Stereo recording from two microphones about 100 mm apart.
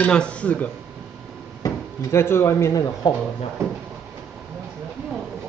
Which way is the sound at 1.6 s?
30° left (ahead or behind).